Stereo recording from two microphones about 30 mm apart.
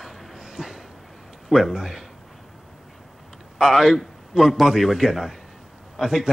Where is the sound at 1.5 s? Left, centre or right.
Centre.